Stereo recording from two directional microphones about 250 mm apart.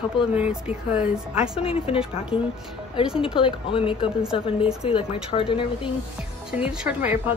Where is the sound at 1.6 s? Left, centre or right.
Left.